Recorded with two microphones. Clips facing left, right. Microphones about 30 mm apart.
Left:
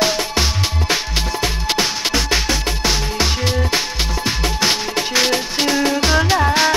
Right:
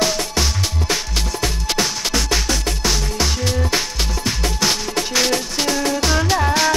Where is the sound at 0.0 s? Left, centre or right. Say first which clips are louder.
Left 2 dB; left.